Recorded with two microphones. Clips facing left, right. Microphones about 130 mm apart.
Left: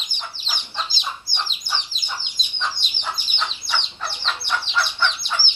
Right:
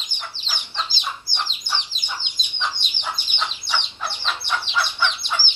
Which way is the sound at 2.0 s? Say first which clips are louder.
Even; 15° right (ahead or behind).